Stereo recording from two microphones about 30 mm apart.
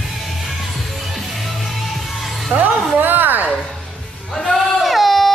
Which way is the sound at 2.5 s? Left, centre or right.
Right.